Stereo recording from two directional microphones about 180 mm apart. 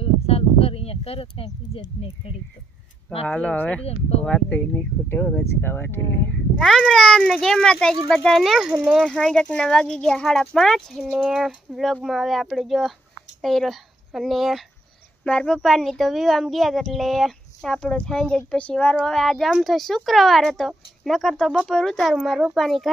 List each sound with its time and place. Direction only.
0.0 s speech: 35° left (ahead or behind)
3.3 s speech: 5° left (ahead or behind)
6.6 s speech: 5° left (ahead or behind)